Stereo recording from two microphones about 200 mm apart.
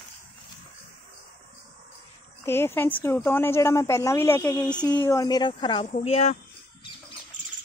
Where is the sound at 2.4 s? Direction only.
10° left (ahead or behind); by 6.3 s 30° left (ahead or behind).